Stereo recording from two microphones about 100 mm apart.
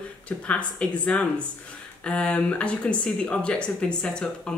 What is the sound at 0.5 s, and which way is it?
Speech, 10° left (ahead or behind).